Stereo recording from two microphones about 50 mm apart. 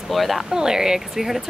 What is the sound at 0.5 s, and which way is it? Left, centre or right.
Speech, centre.